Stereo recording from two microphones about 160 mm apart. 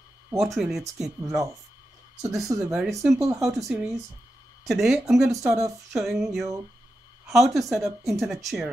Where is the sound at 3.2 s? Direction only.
20° right (ahead or behind).